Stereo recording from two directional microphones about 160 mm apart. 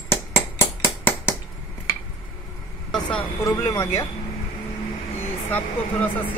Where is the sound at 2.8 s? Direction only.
5° left (ahead or behind).